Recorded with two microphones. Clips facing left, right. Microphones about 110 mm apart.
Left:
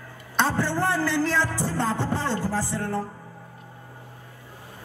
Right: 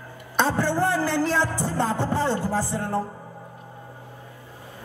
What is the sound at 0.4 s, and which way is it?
Speech, 15° right (ahead or behind).